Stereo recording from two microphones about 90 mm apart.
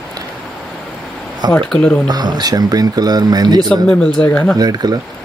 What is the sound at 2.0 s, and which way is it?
Speech, 50° right (ahead or behind).